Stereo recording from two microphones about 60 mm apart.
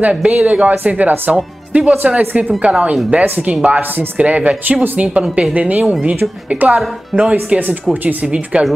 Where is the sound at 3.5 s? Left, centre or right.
Right.